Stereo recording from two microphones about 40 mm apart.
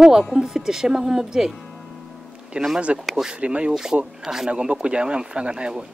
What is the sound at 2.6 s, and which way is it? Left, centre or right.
Speech, right.